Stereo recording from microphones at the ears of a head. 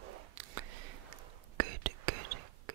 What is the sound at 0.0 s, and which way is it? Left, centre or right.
Whispering, right.